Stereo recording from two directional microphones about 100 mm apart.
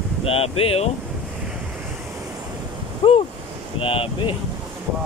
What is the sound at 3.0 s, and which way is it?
Speech, 60° left (ahead or behind).